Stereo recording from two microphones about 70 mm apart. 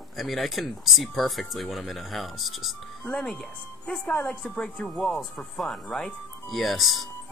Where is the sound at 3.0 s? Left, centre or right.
Centre.